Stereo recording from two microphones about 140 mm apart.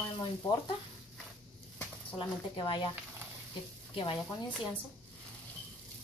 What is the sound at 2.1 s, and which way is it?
Speech, 40° left (ahead or behind).